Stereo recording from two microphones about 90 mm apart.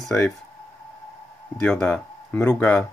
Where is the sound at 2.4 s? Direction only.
20° left (ahead or behind).